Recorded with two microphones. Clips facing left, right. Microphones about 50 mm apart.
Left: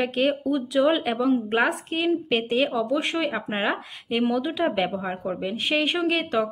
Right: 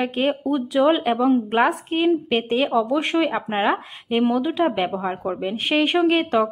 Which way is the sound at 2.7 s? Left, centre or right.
Right.